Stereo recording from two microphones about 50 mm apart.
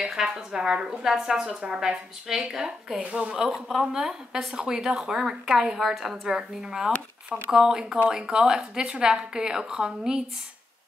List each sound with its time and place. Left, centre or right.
0.0 s a woman's voice: centre
3.5 s a woman's voice: centre